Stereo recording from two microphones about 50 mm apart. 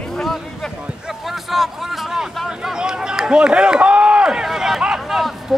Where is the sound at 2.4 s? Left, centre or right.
Centre.